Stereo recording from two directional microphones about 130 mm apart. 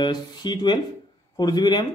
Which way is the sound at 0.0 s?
35° left (ahead or behind).